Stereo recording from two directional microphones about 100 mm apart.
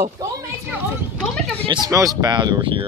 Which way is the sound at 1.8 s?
35° right (ahead or behind).